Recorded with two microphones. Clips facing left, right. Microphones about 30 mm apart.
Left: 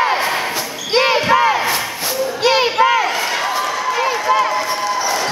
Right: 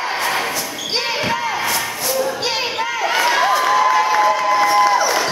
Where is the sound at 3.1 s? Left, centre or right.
Centre.